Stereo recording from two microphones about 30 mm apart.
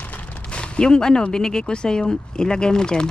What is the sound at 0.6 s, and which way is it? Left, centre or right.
Speech, left.